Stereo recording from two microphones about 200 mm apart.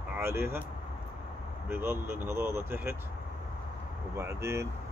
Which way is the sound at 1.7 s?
10° right (ahead or behind).